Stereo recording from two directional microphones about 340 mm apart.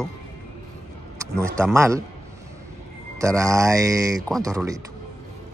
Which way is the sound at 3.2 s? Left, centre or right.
Centre.